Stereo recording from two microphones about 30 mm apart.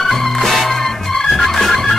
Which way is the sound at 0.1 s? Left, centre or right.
Centre.